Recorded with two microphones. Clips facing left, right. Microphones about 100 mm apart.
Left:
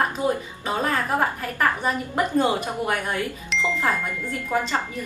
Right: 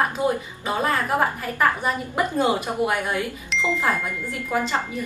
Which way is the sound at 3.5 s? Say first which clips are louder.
Right 1 dB; centre (ahead or behind).